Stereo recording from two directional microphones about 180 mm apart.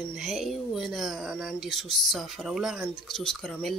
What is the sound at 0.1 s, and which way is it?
Speech, centre (ahead or behind).